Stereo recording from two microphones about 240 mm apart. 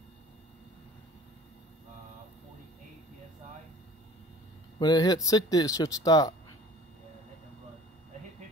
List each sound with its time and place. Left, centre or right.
4.7 s speech: centre